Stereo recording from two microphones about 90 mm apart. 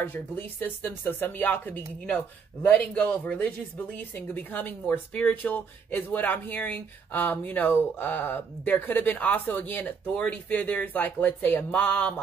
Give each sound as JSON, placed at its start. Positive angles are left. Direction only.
{"t": 0.0, "sound": "speech", "side_deg": 20}